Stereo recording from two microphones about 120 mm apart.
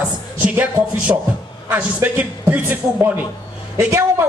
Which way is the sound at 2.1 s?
10° right (ahead or behind).